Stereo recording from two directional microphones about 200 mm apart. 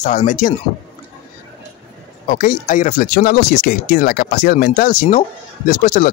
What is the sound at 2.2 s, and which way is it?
Speech, 40° left (ahead or behind).